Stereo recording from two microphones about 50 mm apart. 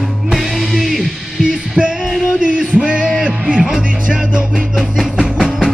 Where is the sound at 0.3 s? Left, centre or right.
Centre.